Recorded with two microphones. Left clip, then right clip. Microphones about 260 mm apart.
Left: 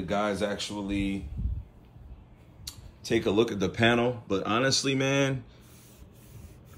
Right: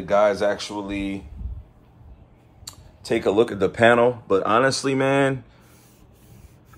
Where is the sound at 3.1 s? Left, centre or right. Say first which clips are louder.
Right 6 dB; right.